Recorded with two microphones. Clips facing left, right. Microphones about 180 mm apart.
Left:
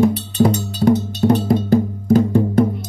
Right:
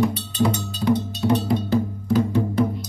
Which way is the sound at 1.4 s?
50° left (ahead or behind).